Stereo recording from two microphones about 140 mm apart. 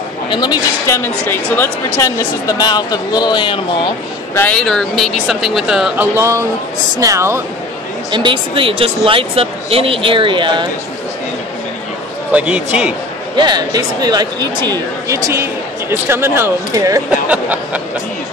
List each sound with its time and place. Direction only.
0.3 s speech: 30° left (ahead or behind)
4.4 s speech: 5° left (ahead or behind)
6.1 s speech: 20° right (ahead or behind)
8.1 s speech: 35° right (ahead or behind)
12.3 s speech: 10° right (ahead or behind)
13.4 s speech: 30° right (ahead or behind)
17.3 s a sound: 10° right (ahead or behind)